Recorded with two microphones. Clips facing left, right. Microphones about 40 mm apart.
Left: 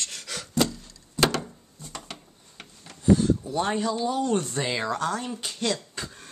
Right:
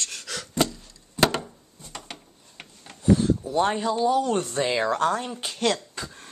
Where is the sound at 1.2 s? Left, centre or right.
Centre.